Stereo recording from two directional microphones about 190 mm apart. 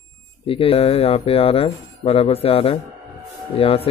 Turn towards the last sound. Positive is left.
turn(degrees=30)  # may be behind; listen again after turning